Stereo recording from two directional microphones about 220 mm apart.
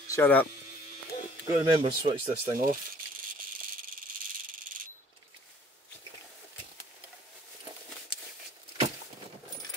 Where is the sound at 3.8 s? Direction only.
40° right (ahead or behind).